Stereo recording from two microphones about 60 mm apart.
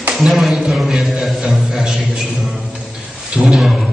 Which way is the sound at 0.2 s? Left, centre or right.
Centre.